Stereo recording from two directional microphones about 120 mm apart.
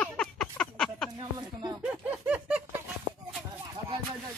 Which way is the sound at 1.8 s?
15° right (ahead or behind).